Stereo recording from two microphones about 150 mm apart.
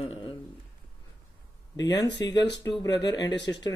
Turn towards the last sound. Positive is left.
turn(degrees=30)  # may be behind; listen again after turning